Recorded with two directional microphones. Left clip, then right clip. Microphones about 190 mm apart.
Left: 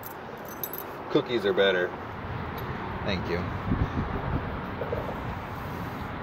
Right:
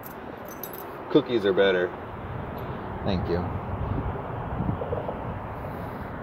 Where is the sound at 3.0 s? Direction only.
35° right (ahead or behind).